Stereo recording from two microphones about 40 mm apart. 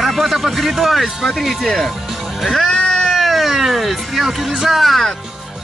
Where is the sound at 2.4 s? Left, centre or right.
Centre.